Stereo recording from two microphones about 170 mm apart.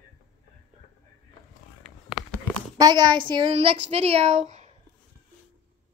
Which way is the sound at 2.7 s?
25° right (ahead or behind).